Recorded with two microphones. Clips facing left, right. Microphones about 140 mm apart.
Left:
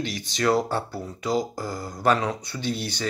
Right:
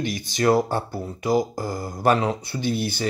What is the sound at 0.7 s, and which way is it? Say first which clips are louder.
Speech: right 2 dB; 20° right (ahead or behind).